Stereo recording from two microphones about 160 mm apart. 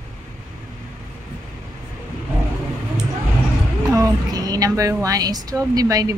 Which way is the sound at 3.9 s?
25° right (ahead or behind).